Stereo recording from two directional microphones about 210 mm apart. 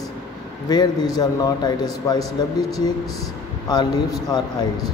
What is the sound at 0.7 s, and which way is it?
A man's voice, 20° left (ahead or behind).